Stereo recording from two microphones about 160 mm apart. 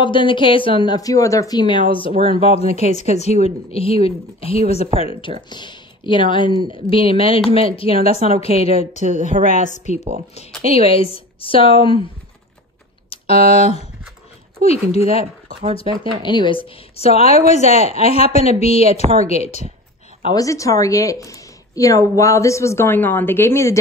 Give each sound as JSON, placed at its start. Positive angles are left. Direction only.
{"t": 0.0, "sound": "speech", "side_deg": 30}
{"t": 9.3, "sound": "a woman's voice", "side_deg": -55}
{"t": 9.7, "sound": "a woman's voice", "side_deg": 45}
{"t": 13.1, "sound": "speech", "side_deg": 40}
{"t": 16.2, "sound": "a woman's voice", "side_deg": 30}
{"t": 20.3, "sound": "a woman's voice", "side_deg": 20}